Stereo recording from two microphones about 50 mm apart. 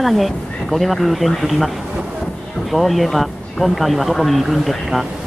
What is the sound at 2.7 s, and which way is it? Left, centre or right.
Speech, centre.